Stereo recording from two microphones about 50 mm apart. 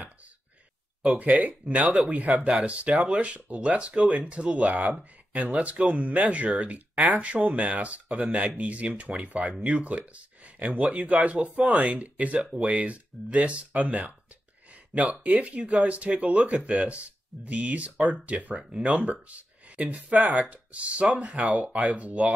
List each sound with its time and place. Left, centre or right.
1.0 s speech: right
14.7 s a sound: right
15.2 s speech: right